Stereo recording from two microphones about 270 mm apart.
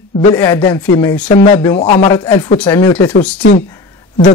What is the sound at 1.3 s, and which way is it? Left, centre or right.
Speech, centre.